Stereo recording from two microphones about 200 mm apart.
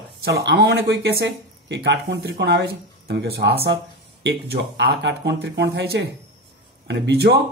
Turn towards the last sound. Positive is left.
turn(degrees=-55)  # may be behind; listen again after turning